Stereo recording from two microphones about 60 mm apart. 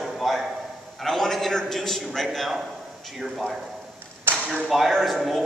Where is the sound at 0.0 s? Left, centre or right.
Centre.